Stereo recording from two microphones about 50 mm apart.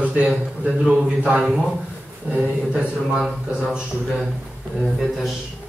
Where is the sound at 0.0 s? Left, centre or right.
Right.